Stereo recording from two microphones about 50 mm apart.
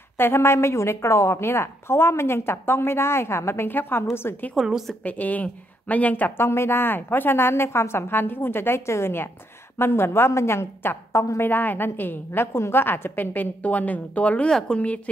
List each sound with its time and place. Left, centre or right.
0.2 s a woman's voice: left
5.0 s a woman's voice: left
6.3 s a woman's voice: left
11.5 s a woman's voice: left
14.7 s a woman's voice: centre